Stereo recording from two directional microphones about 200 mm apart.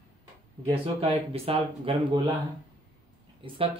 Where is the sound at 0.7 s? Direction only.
30° right (ahead or behind).